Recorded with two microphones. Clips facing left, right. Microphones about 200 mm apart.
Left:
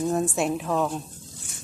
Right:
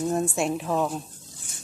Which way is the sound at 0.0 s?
Centre (ahead or behind).